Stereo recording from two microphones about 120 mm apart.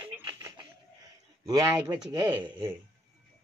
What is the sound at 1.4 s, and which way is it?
Speech, 30° right (ahead or behind).